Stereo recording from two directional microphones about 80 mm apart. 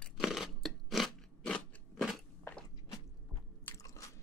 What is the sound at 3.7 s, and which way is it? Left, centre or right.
Biting, left.